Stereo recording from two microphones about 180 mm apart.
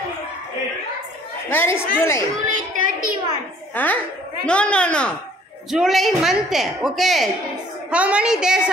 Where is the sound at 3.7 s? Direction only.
10° left (ahead or behind).